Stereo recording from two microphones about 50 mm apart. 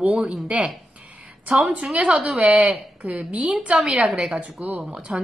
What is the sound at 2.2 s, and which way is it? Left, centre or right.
A woman's voice, centre.